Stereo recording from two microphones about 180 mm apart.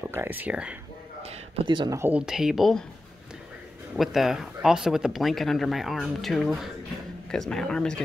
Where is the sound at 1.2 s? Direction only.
35° right (ahead or behind).